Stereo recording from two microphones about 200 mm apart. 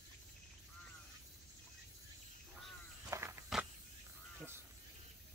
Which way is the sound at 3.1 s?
15° right (ahead or behind).